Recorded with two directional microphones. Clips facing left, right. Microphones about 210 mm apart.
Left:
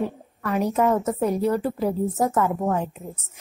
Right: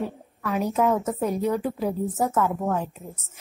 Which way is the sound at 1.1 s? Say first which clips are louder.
Left 3 dB; 10° left (ahead or behind).